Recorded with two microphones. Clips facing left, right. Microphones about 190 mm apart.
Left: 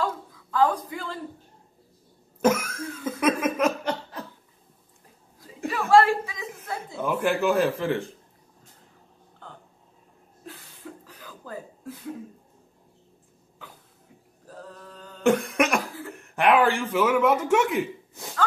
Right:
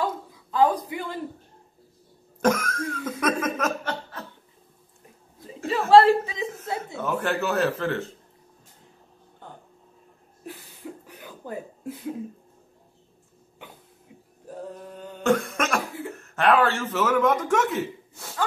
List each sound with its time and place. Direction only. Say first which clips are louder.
0.5 s speech: right 2 dB; 15° right (ahead or behind)
2.4 s laughter: even; 10° left (ahead or behind)
5.7 s chuckle: right 3 dB; 30° right (ahead or behind)
7.0 s speech: left 3 dB; 10° left (ahead or behind)
11.1 s a sound: right 4 dB; 20° right (ahead or behind)
14.5 s a sound: right 6 dB; 20° right (ahead or behind)
15.2 s cough: left 2 dB; 15° left (ahead or behind)
16.2 s a man's voice: even; 15° left (ahead or behind)